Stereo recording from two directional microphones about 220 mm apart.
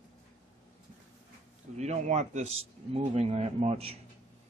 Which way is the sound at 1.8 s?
30° right (ahead or behind).